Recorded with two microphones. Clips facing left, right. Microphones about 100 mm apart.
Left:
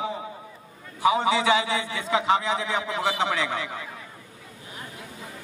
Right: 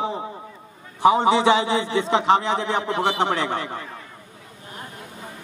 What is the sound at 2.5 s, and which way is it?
A man's voice, 50° right (ahead or behind).